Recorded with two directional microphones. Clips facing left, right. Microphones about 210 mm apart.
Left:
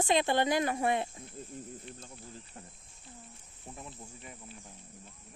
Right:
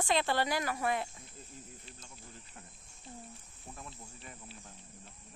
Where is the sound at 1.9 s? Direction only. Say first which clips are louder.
Left 7 dB; 60° left (ahead or behind).